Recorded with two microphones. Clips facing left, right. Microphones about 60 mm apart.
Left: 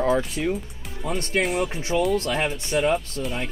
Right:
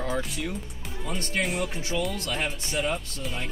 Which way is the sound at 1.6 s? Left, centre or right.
Left.